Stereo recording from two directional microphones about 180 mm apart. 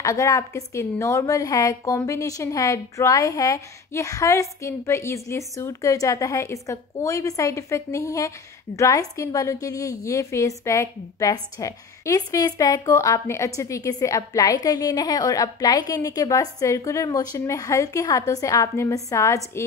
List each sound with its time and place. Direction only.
0.0 s a woman's voice: 15° left (ahead or behind)